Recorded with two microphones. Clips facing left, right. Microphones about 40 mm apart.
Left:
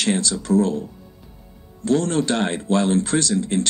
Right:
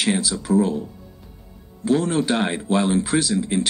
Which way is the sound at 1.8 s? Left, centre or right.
Centre.